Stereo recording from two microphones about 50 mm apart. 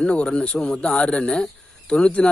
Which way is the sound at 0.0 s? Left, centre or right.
Left.